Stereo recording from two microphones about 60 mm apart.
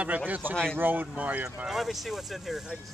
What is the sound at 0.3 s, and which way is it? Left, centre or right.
Speech, right.